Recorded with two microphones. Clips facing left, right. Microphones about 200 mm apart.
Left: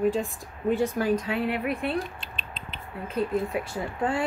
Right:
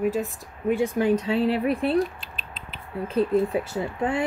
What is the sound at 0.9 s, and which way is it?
A woman's voice, 30° right (ahead or behind).